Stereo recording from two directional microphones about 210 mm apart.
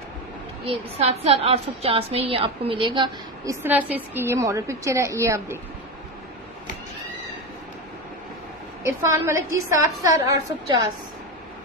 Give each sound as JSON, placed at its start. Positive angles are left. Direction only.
{"t": 0.7, "sound": "a woman's voice", "side_deg": -30}
{"t": 3.6, "sound": "a woman's voice", "side_deg": -10}
{"t": 8.8, "sound": "a woman's voice", "side_deg": -15}